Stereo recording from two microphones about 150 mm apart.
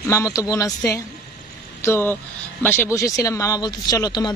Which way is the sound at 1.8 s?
15° left (ahead or behind).